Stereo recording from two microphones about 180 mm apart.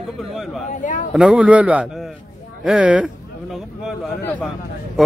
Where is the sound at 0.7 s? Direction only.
45° left (ahead or behind).